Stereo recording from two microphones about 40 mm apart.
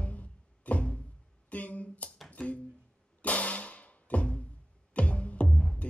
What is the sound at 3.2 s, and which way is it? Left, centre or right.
Music, left.